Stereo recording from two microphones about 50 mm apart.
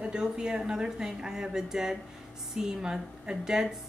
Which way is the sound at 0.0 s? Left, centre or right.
Centre.